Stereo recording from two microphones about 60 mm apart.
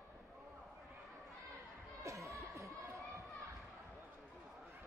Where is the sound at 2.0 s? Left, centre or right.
Right.